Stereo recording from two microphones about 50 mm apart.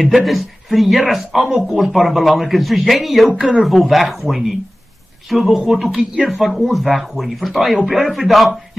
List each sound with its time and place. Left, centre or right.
0.0 s speech: centre
3.3 s speech: right
3.6 s speech: centre